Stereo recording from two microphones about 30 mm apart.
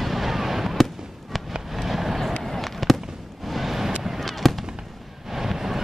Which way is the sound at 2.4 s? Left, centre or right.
Centre.